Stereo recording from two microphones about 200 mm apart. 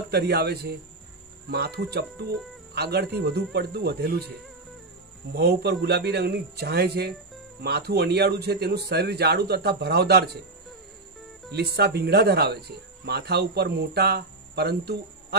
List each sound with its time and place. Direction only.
0.1 s speech: 55° right (ahead or behind)
5.3 s speech: 55° right (ahead or behind)
11.5 s speech: 55° right (ahead or behind)